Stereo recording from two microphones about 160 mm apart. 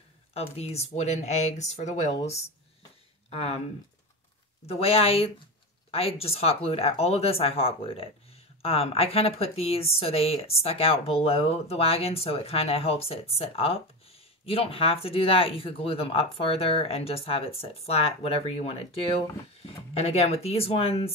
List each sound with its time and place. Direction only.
0.3 s speech: 40° left (ahead or behind)
4.6 s speech: 40° left (ahead or behind)